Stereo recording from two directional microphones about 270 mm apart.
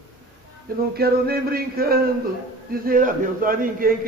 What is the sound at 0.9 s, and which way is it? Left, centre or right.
A man's voice, right.